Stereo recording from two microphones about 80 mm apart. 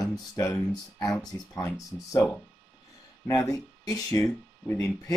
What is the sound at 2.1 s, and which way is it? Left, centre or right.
Speech, centre.